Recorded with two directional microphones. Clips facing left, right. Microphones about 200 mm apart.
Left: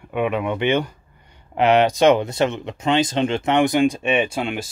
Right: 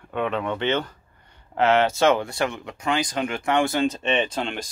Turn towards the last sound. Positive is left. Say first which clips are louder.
# left 3 dB
turn(degrees=10)  # may be behind; listen again after turning